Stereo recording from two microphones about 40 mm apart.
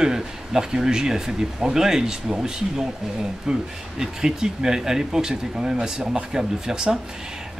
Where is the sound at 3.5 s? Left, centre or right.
Centre.